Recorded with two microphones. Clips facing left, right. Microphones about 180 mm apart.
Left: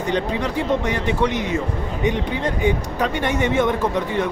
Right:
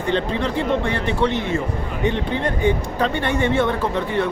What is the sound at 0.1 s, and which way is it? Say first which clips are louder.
Speech: right 2 dB; 15° left (ahead or behind).